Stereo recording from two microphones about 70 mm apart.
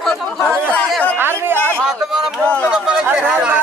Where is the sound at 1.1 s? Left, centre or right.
Right.